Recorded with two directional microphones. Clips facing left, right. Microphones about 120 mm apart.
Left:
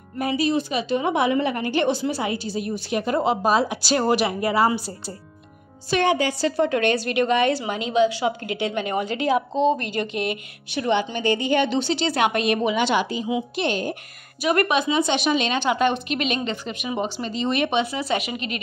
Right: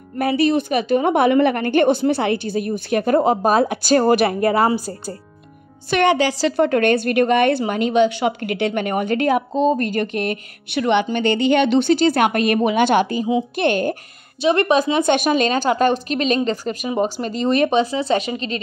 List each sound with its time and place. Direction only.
0.2 s a woman's voice: 60° right (ahead or behind); by 5.1 s 45° right (ahead or behind)
5.9 s a woman's voice: 70° right (ahead or behind); by 10.4 s 45° right (ahead or behind)
10.7 s speech: 70° right (ahead or behind); by 13.9 s 55° right (ahead or behind)
14.4 s speech: 25° right (ahead or behind)
14.8 s speech: 50° right (ahead or behind); by 18.6 s 30° right (ahead or behind)